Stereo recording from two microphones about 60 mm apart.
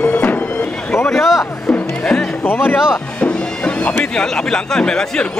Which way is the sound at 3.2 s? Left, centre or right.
Centre.